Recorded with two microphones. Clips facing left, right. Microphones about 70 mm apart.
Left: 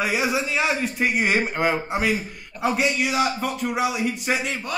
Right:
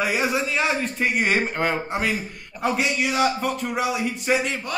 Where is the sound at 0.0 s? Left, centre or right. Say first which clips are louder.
Even; centre.